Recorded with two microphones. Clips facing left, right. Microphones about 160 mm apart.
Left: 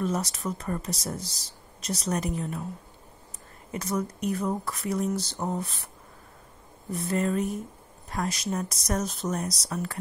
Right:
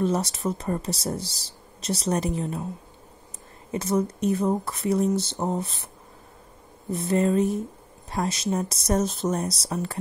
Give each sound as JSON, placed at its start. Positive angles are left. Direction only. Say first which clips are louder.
{"t": 0.0, "sound": "speech", "louder": "right 4 dB", "side_deg": -30}
{"t": 3.7, "sound": "speech", "louder": "right 5 dB", "side_deg": -25}
{"t": 6.9, "sound": "speech", "louder": "right 5 dB", "side_deg": -25}